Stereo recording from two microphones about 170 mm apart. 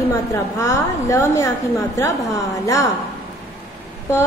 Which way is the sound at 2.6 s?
20° left (ahead or behind).